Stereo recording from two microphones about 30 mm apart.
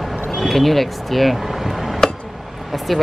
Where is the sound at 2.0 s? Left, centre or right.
Centre.